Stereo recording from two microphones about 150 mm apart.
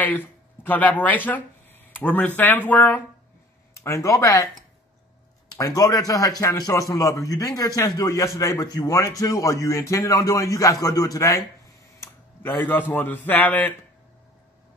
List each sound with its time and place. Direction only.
0.7 s speech: 10° left (ahead or behind)
5.6 s speech: 20° left (ahead or behind)